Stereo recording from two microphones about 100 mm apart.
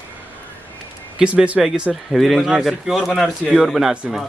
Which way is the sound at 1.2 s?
10° right (ahead or behind).